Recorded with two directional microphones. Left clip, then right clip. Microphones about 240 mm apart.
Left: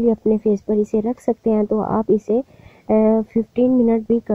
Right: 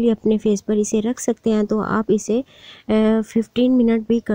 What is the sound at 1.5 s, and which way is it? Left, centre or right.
Speech, right.